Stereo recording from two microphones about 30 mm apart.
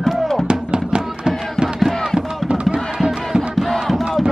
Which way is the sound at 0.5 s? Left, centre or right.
Right.